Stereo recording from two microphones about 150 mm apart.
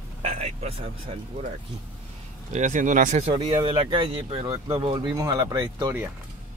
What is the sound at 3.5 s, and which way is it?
Speech, 30° right (ahead or behind).